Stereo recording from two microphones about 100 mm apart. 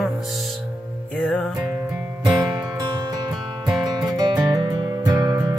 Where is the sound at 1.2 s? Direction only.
10° left (ahead or behind).